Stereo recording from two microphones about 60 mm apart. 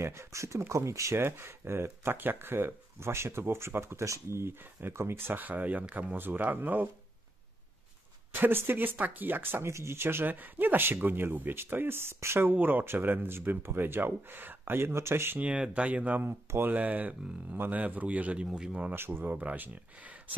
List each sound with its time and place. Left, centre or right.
0.0 s speech: right
1.2 s speech: right
8.3 s speech: right
9.7 s speech: right
12.4 s speech: right
15.4 s a man's voice: centre
16.2 s speech: right
16.7 s a man's voice: right
18.9 s speech: right